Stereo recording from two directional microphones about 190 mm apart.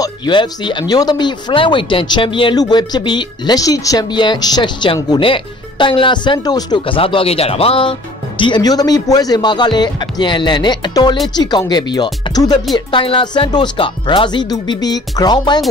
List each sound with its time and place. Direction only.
0.0 s speech: 25° left (ahead or behind)